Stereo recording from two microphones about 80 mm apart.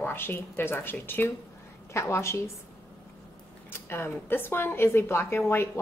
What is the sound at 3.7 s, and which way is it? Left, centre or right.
A woman's voice, left.